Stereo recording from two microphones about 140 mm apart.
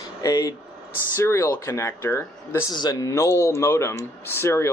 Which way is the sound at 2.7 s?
30° left (ahead or behind).